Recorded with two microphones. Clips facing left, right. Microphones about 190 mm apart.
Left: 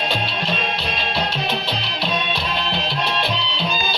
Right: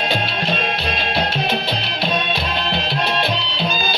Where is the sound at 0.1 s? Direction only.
50° right (ahead or behind).